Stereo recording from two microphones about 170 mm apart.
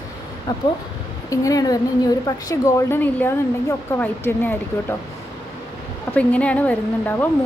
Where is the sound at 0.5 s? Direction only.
25° left (ahead or behind).